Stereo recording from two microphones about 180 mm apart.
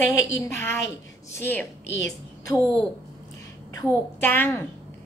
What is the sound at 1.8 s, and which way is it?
Speech, 80° left.